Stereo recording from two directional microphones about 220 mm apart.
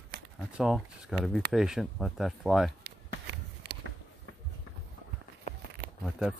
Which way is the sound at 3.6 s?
50° right (ahead or behind).